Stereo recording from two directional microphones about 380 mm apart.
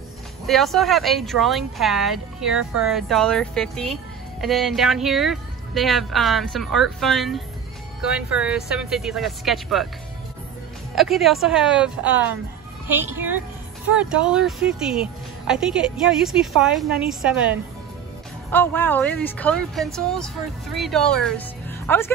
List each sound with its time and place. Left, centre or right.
0.5 s speech: centre
11.0 s speech: centre
13.0 s a child's voice: right
13.8 s speech: centre